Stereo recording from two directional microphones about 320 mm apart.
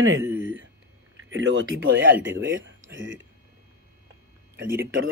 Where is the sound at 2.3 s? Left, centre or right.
Right.